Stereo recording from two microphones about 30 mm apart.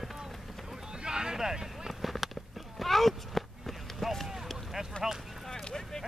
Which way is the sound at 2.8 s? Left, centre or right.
Centre.